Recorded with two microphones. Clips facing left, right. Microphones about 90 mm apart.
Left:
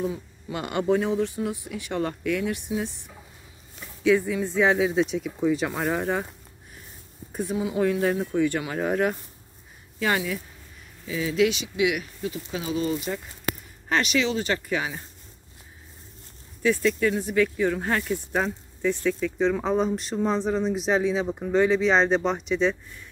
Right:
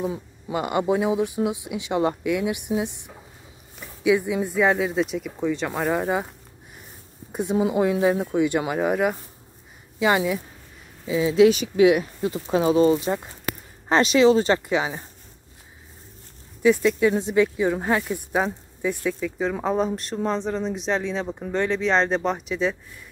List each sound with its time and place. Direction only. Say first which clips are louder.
0.5 s speech: right 2 dB; 5° right (ahead or behind)
4.6 s speech: even; centre (ahead or behind)
7.7 s speech: even; 15° right (ahead or behind)
8.8 s speech: right 2 dB; 5° right (ahead or behind); by 11.5 s 25° right (ahead or behind)
11.5 s speech: right 8 dB; 40° right (ahead or behind)
14.7 s speech: right 4 dB; 25° right (ahead or behind)
16.6 s speech: right 4 dB; 15° right (ahead or behind)